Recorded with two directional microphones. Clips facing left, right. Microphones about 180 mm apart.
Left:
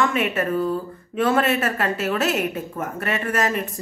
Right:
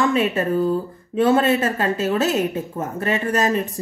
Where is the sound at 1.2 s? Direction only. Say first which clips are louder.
Right 3 dB; 25° right (ahead or behind).